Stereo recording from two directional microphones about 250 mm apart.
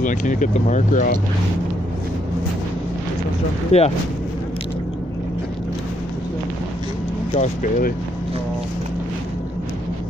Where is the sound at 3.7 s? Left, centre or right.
Left.